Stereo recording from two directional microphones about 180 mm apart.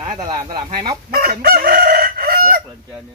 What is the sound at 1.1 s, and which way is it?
Chicken, 60° right (ahead or behind).